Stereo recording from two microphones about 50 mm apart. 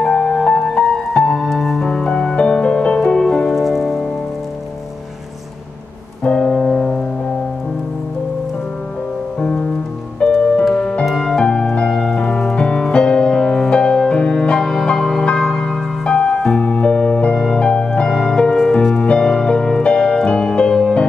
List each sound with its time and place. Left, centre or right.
0.0 s music: centre
3.5 s music: centre
6.4 s music: centre
9.4 s music: centre
11.1 s music: centre
11.3 s music: centre
17.6 s music: centre